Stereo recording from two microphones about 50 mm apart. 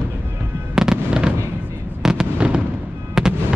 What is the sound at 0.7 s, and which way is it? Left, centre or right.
Fireworks, centre.